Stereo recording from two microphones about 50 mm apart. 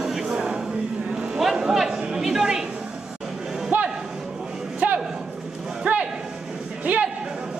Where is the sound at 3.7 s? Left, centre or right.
Right.